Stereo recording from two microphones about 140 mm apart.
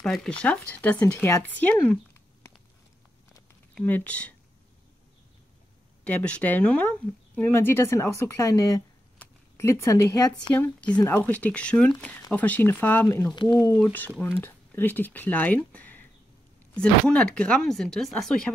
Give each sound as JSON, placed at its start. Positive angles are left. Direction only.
{"t": 0.0, "sound": "speech", "side_deg": 5}
{"t": 3.7, "sound": "speech", "side_deg": 10}
{"t": 6.0, "sound": "speech", "side_deg": 10}
{"t": 10.5, "sound": "speech", "side_deg": 10}